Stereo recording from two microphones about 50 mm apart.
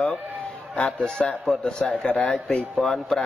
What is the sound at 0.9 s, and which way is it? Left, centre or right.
A man's voice, centre.